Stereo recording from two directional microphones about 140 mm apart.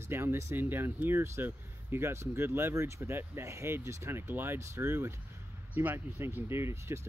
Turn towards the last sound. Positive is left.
turn(degrees=-20)  # may be behind; listen again after turning